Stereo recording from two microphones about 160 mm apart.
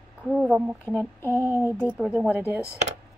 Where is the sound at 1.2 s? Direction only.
15° left (ahead or behind).